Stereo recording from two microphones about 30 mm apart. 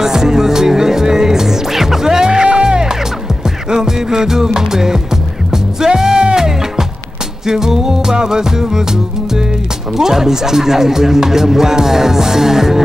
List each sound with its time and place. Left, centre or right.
0.0 s music: centre
9.9 s speech: centre